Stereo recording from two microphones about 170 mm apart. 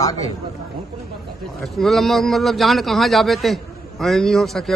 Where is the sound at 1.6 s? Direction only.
Centre (ahead or behind).